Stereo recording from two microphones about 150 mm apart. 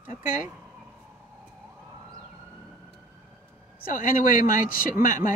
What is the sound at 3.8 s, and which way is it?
Speech, 70° left (ahead or behind).